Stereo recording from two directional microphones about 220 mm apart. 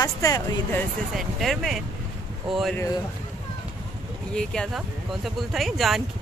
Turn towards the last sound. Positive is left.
turn(degrees=0)  # may be behind; listen again after turning